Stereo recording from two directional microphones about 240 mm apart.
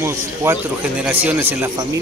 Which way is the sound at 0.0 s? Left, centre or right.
Centre.